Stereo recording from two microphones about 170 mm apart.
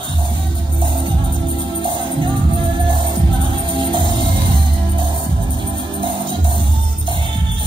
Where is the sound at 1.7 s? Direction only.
30° right (ahead or behind).